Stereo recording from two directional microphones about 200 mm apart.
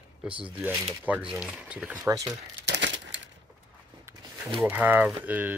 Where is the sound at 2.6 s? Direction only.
60° right (ahead or behind).